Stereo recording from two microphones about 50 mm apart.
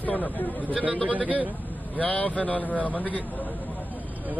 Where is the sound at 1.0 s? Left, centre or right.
Right.